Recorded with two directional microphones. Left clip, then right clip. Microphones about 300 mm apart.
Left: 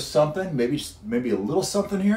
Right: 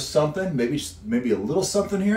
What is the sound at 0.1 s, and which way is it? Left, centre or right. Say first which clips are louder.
Speech: left 1 dB; centre.